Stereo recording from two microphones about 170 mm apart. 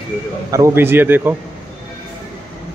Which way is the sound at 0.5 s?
15° right (ahead or behind).